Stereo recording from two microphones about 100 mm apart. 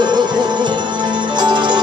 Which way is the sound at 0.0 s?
50° right (ahead or behind).